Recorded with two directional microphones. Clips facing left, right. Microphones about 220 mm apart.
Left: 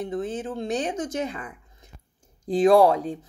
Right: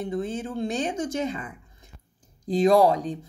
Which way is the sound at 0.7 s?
25° right (ahead or behind).